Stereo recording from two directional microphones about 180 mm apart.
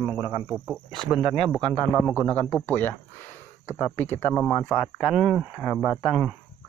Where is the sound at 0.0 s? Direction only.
10° right (ahead or behind).